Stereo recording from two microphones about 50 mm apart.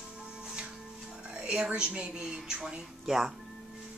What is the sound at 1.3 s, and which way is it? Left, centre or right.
Speech, right.